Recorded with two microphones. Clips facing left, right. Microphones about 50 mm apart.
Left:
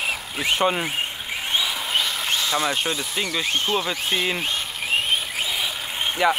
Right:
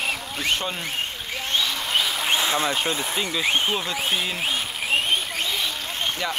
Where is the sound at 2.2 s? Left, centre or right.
Right.